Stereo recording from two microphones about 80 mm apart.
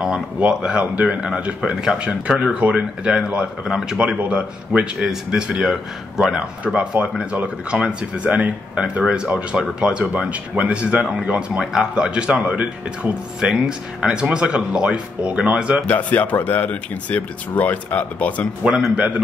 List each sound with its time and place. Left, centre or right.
0.0 s speech: centre
5.6 s speech: centre
15.9 s speech: centre
18.9 s speech: centre